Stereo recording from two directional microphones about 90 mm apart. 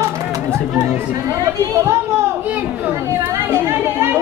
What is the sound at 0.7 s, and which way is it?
Speech, 30° right (ahead or behind).